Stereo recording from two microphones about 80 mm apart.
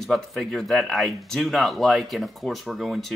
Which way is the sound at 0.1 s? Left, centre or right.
Centre.